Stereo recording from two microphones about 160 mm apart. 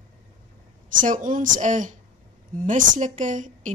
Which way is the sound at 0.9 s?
55° right (ahead or behind).